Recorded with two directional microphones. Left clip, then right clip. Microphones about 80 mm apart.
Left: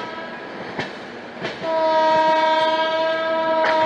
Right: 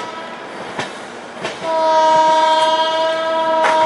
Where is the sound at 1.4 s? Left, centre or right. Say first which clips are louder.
Right 4 dB; right.